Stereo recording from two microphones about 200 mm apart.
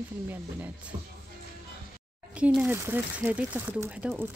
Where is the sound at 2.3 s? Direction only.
5° right (ahead or behind).